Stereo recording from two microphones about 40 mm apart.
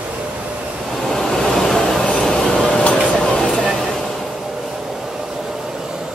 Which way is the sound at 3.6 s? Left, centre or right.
Centre.